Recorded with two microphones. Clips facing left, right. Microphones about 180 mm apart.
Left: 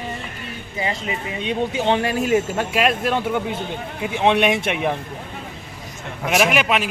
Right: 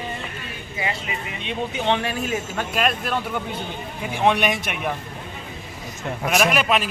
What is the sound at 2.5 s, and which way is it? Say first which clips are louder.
Speech: left 3 dB; 25° left (ahead or behind).